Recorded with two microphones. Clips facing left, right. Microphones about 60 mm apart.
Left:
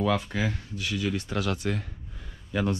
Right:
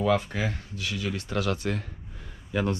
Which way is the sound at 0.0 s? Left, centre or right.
Right.